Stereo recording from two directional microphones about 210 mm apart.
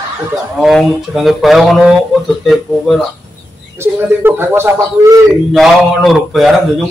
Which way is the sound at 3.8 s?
10° right (ahead or behind).